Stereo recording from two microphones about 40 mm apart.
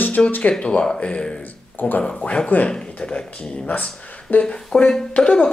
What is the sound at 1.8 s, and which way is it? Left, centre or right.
Speech, left.